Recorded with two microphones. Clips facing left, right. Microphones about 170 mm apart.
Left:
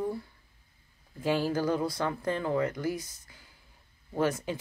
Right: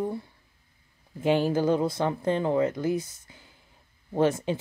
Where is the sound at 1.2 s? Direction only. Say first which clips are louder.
Right 5 dB; 20° right (ahead or behind).